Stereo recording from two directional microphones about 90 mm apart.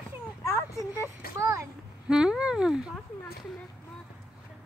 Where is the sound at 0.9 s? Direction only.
35° right (ahead or behind).